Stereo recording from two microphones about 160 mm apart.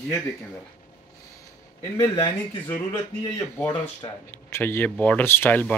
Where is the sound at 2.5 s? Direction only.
35° left (ahead or behind).